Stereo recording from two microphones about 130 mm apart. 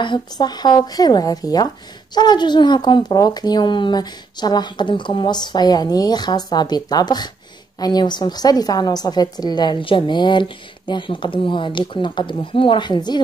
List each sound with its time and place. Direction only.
0.0 s speech: 35° left (ahead or behind)